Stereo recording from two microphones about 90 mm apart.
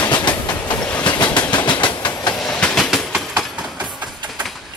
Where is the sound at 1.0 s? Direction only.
60° left (ahead or behind).